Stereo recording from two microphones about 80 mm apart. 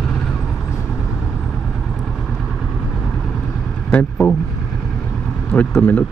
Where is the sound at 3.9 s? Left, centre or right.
Centre.